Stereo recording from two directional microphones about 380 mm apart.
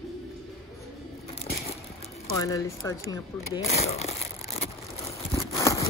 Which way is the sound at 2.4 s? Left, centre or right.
Centre.